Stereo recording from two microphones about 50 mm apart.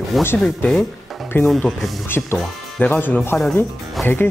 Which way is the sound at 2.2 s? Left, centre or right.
Centre.